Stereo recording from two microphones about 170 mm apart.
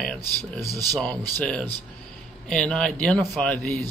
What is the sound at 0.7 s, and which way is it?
Speech, 20° right (ahead or behind).